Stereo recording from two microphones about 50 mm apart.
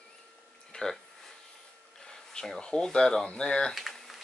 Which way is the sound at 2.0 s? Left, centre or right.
Centre.